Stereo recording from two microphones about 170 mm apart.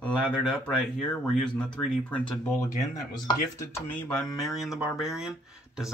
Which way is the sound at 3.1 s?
20° left (ahead or behind).